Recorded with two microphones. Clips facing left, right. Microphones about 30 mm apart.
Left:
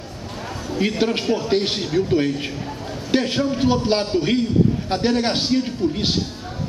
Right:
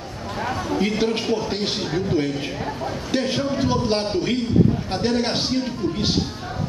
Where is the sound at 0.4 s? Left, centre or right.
Right.